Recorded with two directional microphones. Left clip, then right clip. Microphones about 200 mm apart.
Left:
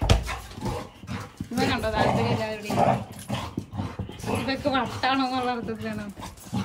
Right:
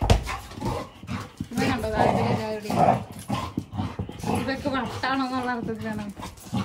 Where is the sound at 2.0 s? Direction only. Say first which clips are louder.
Right 3 dB; 35° right (ahead or behind).